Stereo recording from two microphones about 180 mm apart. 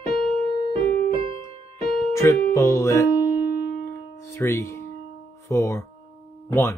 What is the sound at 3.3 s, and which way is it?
Music, 60° left (ahead or behind).